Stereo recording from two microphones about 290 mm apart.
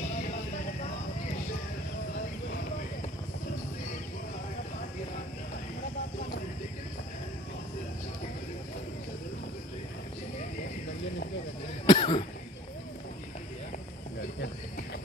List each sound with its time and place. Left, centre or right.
11.8 s cough: centre